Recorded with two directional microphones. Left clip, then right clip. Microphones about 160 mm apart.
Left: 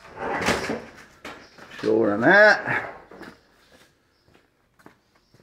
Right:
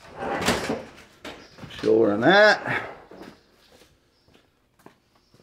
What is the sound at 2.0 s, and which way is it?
Speech, 15° right (ahead or behind).